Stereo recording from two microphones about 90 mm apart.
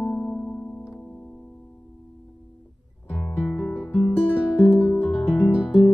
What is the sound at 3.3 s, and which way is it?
Music, 5° left (ahead or behind).